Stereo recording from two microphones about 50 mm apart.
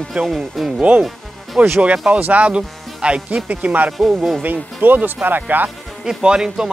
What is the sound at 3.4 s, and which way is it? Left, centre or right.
Speech, right.